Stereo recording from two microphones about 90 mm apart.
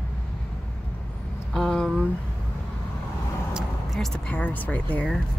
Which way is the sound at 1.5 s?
5° left (ahead or behind).